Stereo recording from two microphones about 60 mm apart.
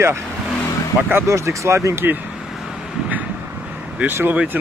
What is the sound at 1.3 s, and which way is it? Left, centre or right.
Speech, right.